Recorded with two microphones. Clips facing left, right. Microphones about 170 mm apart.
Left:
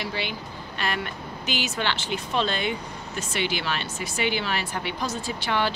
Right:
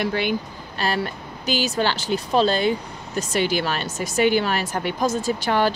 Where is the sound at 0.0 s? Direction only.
50° right (ahead or behind).